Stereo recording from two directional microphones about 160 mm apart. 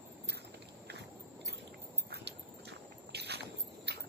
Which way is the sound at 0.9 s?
90° right.